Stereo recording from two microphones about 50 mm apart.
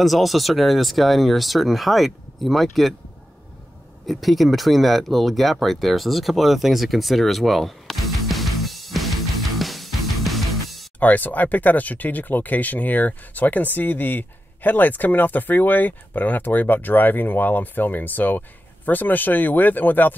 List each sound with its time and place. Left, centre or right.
0.0 s speech: centre
4.0 s a sound: centre
11.0 s speech: left